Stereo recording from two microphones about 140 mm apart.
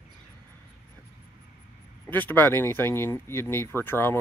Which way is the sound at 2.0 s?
15° left (ahead or behind).